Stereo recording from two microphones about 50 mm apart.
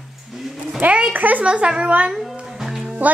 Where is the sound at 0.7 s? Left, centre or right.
Right.